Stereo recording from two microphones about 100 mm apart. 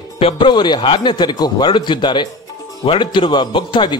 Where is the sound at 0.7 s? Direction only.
65° left (ahead or behind).